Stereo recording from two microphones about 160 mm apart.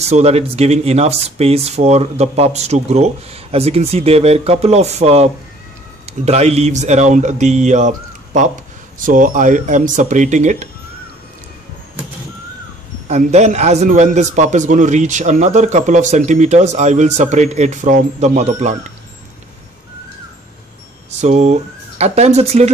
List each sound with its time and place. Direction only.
0.0 s speech: 40° right (ahead or behind)
13.1 s speech: 45° right (ahead or behind)
21.2 s speech: 45° right (ahead or behind)